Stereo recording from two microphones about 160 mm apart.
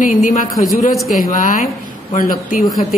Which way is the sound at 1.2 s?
55° left (ahead or behind).